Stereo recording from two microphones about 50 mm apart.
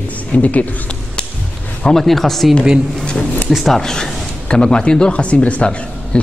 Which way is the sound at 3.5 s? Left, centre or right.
Centre.